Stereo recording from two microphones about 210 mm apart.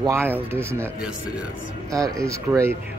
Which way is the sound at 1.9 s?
15° right (ahead or behind).